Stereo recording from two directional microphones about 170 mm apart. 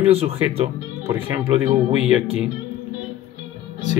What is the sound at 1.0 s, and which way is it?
Speech, 15° right (ahead or behind).